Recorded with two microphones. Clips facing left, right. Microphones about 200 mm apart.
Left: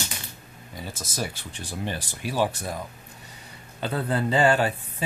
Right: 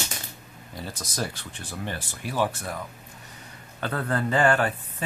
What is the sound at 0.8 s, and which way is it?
Speech, 5° left (ahead or behind).